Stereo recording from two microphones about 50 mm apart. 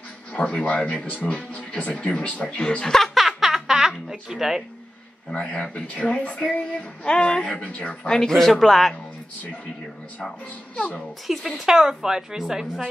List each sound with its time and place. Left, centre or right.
0.3 s a woman's voice: centre
3.2 s a sound: centre
4.1 s a woman's voice: centre
5.3 s a woman's voice: left
8.4 s speech: centre
11.2 s a woman's voice: centre